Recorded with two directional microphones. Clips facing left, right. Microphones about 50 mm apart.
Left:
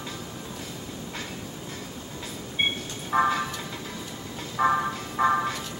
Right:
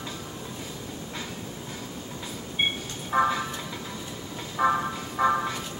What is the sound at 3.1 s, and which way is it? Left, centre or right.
Music, centre.